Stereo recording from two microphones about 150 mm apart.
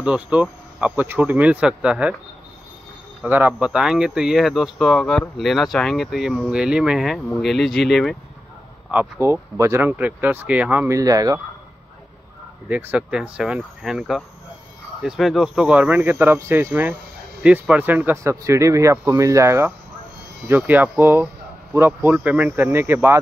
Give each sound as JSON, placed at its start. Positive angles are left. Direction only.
{"t": 0.0, "sound": "speech", "side_deg": -10}
{"t": 3.3, "sound": "speech", "side_deg": -10}
{"t": 8.9, "sound": "speech", "side_deg": -20}
{"t": 11.0, "sound": "speech", "side_deg": -25}
{"t": 12.6, "sound": "speech", "side_deg": -10}